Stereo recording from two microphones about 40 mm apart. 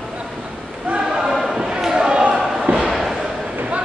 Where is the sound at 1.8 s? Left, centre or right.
Centre.